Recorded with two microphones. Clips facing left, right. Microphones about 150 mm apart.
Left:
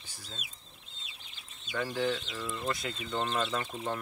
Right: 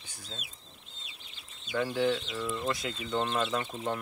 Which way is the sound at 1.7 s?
15° right (ahead or behind).